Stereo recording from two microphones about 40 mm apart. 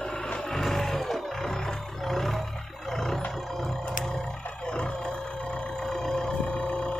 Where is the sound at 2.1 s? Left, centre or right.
Centre.